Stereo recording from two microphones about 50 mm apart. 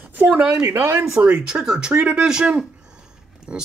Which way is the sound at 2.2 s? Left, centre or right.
Centre.